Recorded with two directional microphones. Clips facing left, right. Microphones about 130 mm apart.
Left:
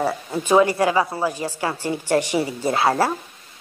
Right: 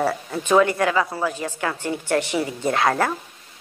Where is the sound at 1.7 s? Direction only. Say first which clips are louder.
Left 3 dB; 10° left (ahead or behind).